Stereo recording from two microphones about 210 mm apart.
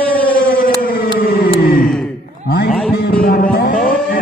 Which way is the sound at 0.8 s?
45° left (ahead or behind).